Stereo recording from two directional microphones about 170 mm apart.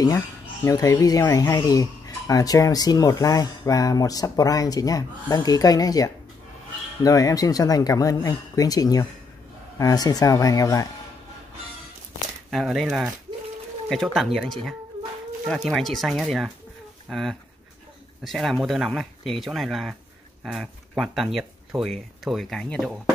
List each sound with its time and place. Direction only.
0.7 s speech: 20° left (ahead or behind)
12.4 s speech: centre (ahead or behind)